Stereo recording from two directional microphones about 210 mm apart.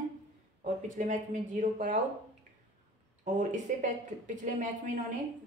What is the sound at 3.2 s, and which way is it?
Speech, 35° right (ahead or behind).